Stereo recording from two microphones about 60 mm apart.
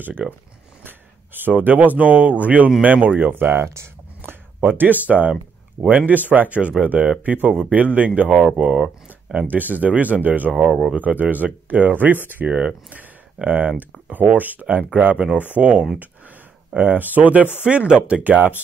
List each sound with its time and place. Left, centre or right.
0.2 s speech: centre
0.8 s speech: right
4.6 s speech: right